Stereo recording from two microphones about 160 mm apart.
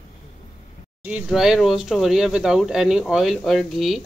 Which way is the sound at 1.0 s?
5° right (ahead or behind).